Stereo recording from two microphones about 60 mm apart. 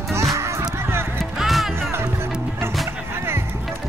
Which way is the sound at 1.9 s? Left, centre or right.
Right.